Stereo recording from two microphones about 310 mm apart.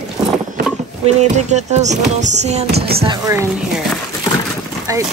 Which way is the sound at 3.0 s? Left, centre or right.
Centre.